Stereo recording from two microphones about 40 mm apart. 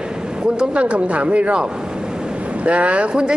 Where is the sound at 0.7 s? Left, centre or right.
Right.